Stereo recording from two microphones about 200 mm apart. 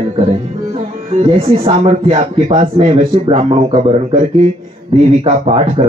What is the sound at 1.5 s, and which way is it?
A man's voice, 30° right (ahead or behind).